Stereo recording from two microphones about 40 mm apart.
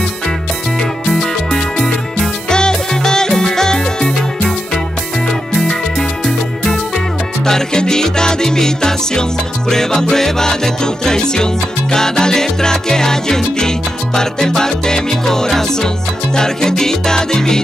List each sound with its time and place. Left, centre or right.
1.0 s music: centre
5.6 s music: centre